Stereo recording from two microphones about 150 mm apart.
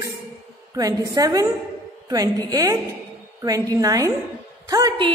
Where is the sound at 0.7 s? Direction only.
25° right (ahead or behind).